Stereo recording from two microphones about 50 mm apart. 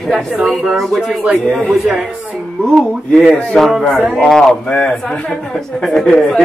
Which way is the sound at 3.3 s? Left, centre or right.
Left.